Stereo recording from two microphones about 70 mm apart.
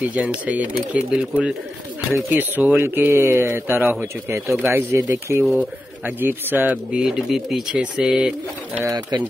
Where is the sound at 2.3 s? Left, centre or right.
Right.